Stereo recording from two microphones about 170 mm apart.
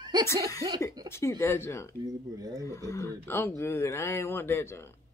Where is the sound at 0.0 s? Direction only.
25° right (ahead or behind).